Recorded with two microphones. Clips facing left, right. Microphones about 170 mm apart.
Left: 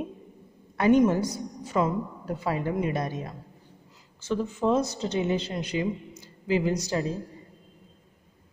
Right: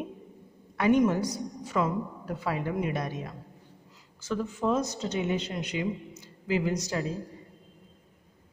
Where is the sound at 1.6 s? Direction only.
25° left (ahead or behind).